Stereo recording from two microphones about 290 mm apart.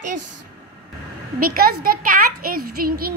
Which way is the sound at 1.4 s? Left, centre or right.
Right.